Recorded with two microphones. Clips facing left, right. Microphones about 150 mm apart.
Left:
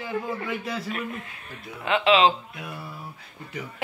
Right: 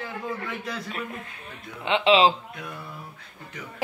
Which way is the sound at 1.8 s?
30° right (ahead or behind).